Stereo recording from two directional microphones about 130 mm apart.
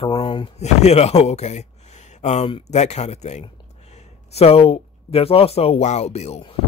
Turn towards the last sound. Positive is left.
turn(degrees=55)  # may be behind; listen again after turning